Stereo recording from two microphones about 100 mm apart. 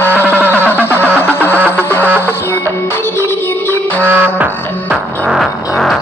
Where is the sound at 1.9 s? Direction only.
25° left (ahead or behind).